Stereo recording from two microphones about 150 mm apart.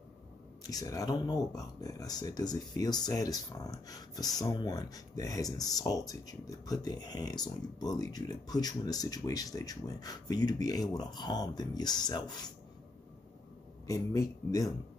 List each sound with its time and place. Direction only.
0.7 s speech: 25° left (ahead or behind)
13.8 s speech: 20° left (ahead or behind)